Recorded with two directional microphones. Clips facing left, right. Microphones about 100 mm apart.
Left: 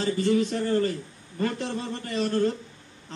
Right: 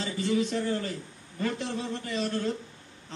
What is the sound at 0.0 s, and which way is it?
A man's voice, 50° left (ahead or behind).